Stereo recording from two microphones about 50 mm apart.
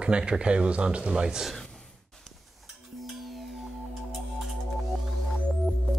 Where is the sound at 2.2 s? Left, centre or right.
Centre.